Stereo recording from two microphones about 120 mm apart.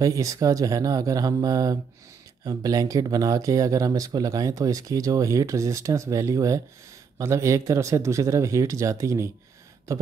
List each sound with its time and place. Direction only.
0.0 s speech: 30° right (ahead or behind)